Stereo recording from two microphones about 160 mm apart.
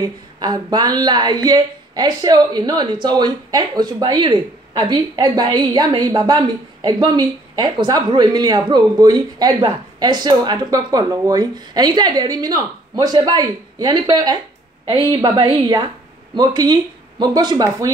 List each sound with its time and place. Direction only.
0.0 s speech: 25° right (ahead or behind)